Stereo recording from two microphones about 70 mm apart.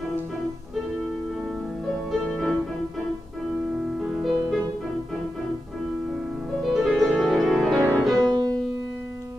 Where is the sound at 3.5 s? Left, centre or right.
Centre.